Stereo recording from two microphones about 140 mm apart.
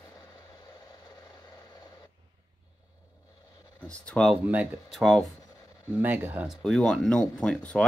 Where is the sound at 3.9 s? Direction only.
5° left (ahead or behind).